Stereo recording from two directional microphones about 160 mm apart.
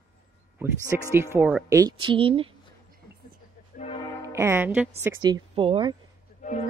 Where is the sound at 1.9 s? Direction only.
35° right (ahead or behind).